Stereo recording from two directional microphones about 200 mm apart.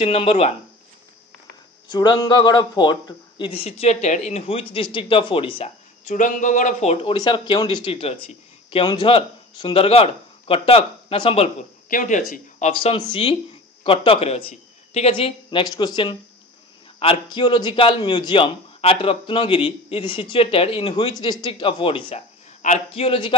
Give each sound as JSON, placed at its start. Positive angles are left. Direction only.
{"t": 0.0, "sound": "speech", "side_deg": 30}
{"t": 1.9, "sound": "a man's voice", "side_deg": 20}
{"t": 11.9, "sound": "a man's voice", "side_deg": 40}